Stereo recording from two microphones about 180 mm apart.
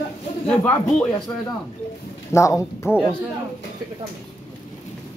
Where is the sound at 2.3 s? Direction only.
15° left (ahead or behind).